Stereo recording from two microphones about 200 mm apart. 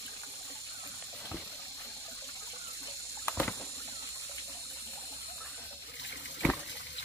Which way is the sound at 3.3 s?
10° left (ahead or behind).